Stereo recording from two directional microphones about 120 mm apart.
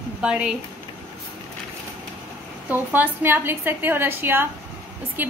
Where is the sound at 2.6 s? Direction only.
15° right (ahead or behind).